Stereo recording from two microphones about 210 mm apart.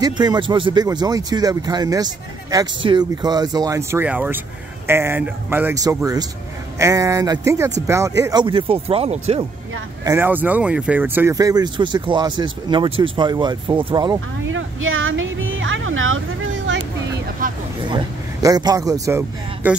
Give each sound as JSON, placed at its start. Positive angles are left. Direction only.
{"t": 0.0, "sound": "speech", "side_deg": -20}
{"t": 10.0, "sound": "speech", "side_deg": -10}
{"t": 14.4, "sound": "music", "side_deg": -70}
{"t": 17.4, "sound": "vehicle", "side_deg": -40}
{"t": 17.8, "sound": "speech", "side_deg": -20}